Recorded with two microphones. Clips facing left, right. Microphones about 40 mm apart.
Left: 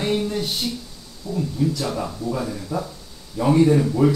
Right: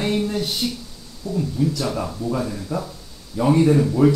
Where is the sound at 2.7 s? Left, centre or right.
Right.